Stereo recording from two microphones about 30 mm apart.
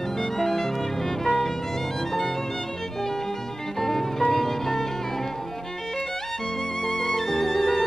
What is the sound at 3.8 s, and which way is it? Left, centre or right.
Music, centre.